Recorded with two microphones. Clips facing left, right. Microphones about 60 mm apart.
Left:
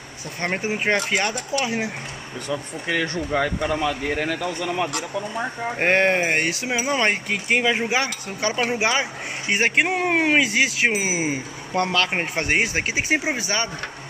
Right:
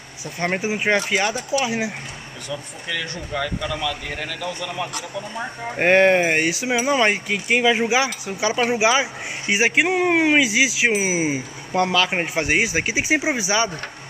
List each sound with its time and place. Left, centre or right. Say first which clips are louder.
0.4 s speech: right 2 dB; centre
2.4 s speech: left 4 dB; left
5.3 s speech: left 2 dB; centre
5.8 s speech: right 4 dB; centre